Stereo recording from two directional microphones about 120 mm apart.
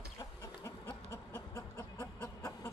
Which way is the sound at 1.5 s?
25° left (ahead or behind).